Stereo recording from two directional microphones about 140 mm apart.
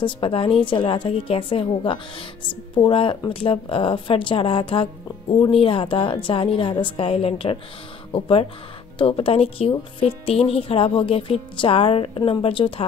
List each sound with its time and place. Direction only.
0.0 s speech: 40° left (ahead or behind)